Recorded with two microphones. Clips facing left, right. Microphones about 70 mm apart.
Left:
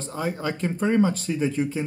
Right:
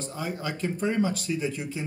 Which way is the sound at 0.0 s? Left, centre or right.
Left.